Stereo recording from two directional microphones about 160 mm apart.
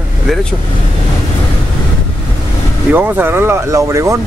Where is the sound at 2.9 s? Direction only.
10° right (ahead or behind).